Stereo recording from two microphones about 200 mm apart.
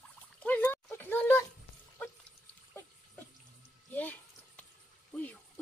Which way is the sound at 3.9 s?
10° left (ahead or behind).